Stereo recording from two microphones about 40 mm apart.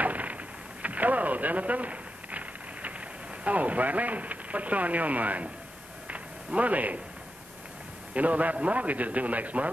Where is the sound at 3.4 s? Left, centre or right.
Right.